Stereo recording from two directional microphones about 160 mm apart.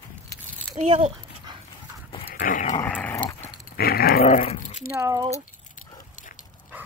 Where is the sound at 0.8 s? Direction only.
45° right (ahead or behind).